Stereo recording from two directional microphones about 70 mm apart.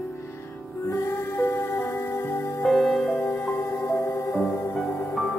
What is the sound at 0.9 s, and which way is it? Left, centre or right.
Music, left.